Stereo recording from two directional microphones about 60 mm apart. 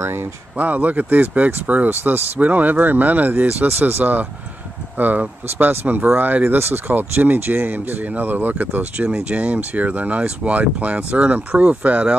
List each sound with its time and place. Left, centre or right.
0.0 s speech: right
0.6 s speech: right